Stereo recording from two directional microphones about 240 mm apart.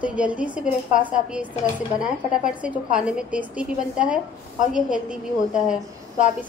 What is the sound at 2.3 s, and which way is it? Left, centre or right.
A woman's voice, centre.